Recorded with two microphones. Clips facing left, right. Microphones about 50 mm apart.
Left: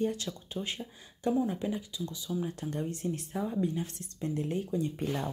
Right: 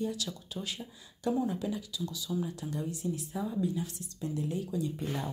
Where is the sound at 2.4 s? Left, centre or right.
Left.